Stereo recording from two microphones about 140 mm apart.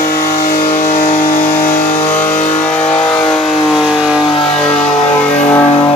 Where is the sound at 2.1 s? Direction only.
15° left (ahead or behind); by 4.2 s 5° right (ahead or behind).